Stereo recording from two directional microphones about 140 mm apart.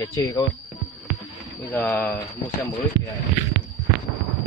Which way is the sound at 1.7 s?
15° left (ahead or behind).